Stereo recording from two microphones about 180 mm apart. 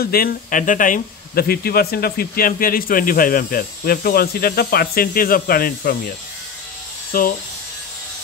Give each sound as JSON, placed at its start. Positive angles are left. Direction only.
{"t": 0.0, "sound": "speech", "side_deg": 55}